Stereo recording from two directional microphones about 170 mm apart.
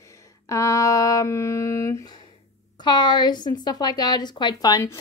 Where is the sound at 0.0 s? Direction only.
15° left (ahead or behind).